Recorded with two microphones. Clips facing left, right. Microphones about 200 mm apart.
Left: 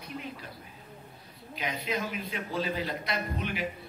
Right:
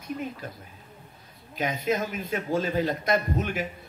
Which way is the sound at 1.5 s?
45° right (ahead or behind).